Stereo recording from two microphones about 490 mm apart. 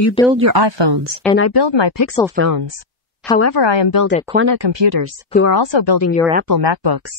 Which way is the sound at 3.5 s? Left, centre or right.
Left.